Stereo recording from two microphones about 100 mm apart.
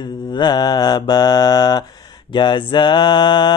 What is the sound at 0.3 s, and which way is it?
Mantra, 45° left (ahead or behind).